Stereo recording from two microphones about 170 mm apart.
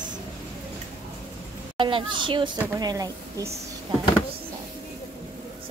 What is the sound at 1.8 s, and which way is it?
Speech, 30° right (ahead or behind).